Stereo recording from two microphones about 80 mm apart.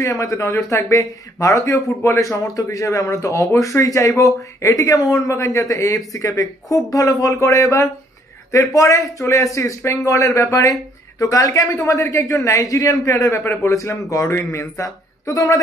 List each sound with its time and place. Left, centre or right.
0.0 s speech: left